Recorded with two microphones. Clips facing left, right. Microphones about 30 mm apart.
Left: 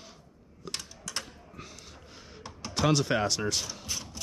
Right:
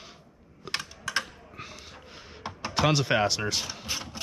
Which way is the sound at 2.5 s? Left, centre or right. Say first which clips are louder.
Right 2 dB; right.